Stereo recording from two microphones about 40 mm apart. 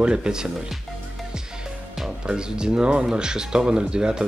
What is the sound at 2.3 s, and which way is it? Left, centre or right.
Speech, right.